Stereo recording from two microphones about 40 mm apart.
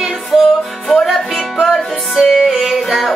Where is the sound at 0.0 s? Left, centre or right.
Centre.